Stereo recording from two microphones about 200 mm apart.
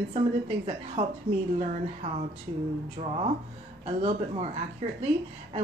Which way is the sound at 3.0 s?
30° right (ahead or behind).